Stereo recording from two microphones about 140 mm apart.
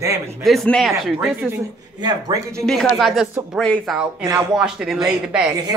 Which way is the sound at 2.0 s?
25° right (ahead or behind).